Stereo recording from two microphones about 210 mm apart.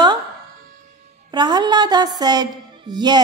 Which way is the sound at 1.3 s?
20° right (ahead or behind).